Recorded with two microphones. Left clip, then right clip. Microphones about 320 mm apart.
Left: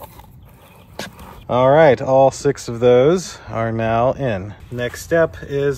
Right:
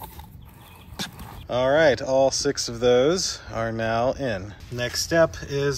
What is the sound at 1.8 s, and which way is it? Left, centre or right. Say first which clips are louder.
Speech: left 6 dB; centre.